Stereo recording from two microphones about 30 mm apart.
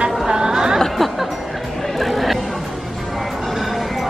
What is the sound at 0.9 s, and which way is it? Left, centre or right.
Music, centre.